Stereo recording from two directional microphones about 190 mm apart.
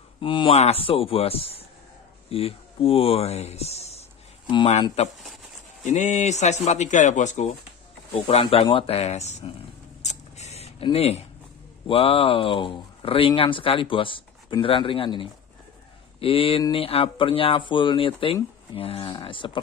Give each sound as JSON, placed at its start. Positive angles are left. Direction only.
{"t": 0.2, "sound": "speech", "side_deg": 25}
{"t": 10.0, "sound": "keys jangling", "side_deg": 35}
{"t": 11.9, "sound": "speech", "side_deg": 30}